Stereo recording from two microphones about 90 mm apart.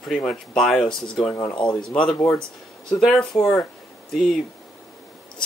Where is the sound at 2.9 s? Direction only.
5° left (ahead or behind).